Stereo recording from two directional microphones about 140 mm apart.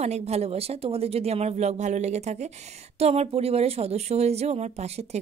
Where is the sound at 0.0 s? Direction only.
50° right (ahead or behind).